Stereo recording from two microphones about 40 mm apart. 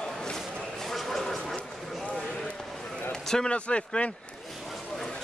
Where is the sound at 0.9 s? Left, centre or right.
Centre.